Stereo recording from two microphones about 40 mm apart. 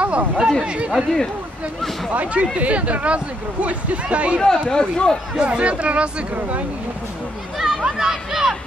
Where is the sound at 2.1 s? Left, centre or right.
Right.